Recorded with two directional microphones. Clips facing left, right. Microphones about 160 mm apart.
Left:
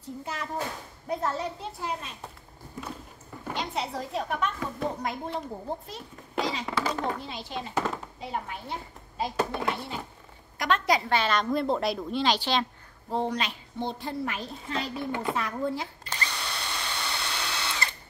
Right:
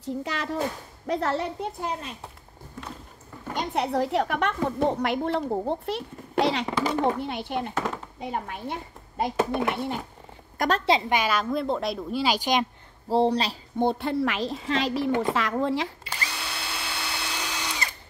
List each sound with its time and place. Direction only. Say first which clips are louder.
0.0 s speech: right 6 dB; 90° right
1.0 s a woman's voice: right 4 dB; 80° right; by 1.9 s 60° right (ahead or behind)
3.5 s a woman's voice: right 7 dB; 60° right (ahead or behind)
6.6 s a child's voice: right 5 dB; 20° right (ahead or behind)
7.2 s a child's voice: right 7 dB; 60° right (ahead or behind)
9.4 s a child's voice: right 3 dB; 20° right (ahead or behind)
10.9 s a woman's voice: right 1 dB; 20° right (ahead or behind)
13.1 s speech: right 7 dB; 35° right (ahead or behind)
13.7 s speech: right 8 dB; 60° right (ahead or behind); by 15.9 s 90° right
16.0 s drill: even; 5° right (ahead or behind)